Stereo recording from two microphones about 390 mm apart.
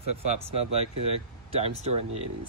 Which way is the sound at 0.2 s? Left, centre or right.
Centre.